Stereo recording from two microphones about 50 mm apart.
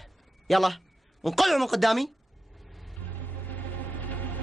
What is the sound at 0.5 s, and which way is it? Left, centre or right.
Speech, centre.